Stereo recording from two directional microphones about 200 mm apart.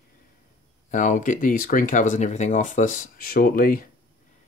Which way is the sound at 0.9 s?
40° left (ahead or behind).